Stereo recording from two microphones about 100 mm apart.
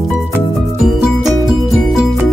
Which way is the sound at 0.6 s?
Centre (ahead or behind).